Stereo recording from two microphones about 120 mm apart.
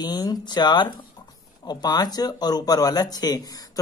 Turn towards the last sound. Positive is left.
turn(degrees=30)  # may be behind; listen again after turning